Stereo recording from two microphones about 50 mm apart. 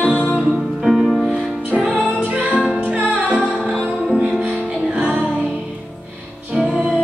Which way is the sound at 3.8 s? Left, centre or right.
Centre.